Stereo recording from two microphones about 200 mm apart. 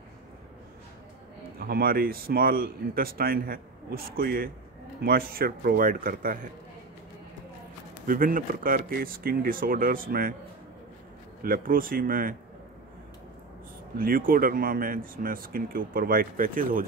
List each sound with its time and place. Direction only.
1.6 s speech: 50° right (ahead or behind)
8.1 s speech: 45° right (ahead or behind)
11.4 s speech: 45° right (ahead or behind)
13.9 s speech: 45° right (ahead or behind)